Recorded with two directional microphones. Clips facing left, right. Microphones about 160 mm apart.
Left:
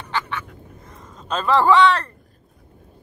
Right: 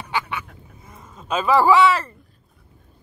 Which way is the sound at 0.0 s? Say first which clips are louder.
Even; 10° right (ahead or behind).